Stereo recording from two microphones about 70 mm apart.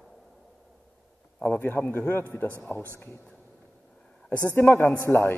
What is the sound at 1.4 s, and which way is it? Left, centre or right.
A man's voice, left.